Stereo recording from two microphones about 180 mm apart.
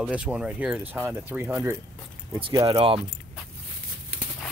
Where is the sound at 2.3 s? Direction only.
30° right (ahead or behind).